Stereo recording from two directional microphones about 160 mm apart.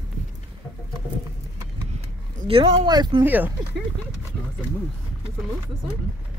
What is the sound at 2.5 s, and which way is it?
Speech, 40° right (ahead or behind).